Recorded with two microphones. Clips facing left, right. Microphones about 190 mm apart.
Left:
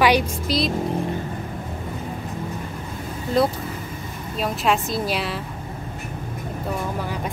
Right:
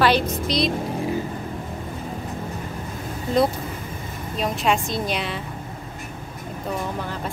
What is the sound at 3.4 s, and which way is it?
A woman's voice, centre (ahead or behind).